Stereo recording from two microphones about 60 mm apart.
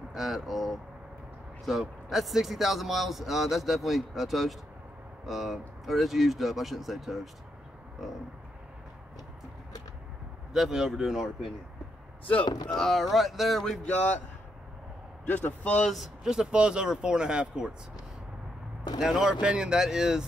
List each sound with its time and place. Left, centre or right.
0.1 s speech: centre
10.5 s speech: centre
12.3 s a man's voice: left
12.7 s speech: centre
13.1 s speech: centre
13.8 s a man's voice: left
15.2 s a man's voice: left
16.0 s speech: centre
18.9 s speech: centre